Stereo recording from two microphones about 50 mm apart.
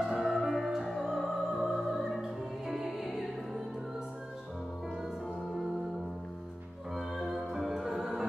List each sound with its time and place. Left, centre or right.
0.0 s music: centre
7.0 s music: centre